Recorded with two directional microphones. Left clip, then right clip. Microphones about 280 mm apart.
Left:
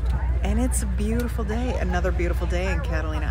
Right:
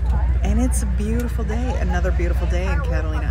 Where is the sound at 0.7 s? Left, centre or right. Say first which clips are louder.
Right 1 dB; centre.